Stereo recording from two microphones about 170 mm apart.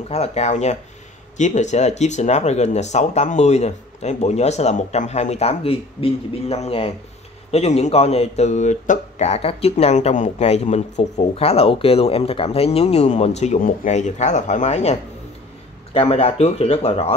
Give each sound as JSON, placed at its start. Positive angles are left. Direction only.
{"t": 0.1, "sound": "speech", "side_deg": 40}